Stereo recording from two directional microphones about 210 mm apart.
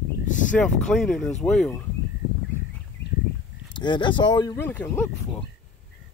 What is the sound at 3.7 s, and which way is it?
Speech, 20° left (ahead or behind).